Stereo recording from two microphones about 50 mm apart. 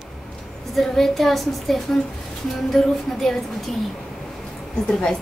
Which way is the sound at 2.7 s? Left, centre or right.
Centre.